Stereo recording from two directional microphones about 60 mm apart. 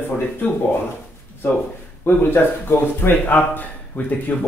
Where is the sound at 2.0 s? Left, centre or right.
Left.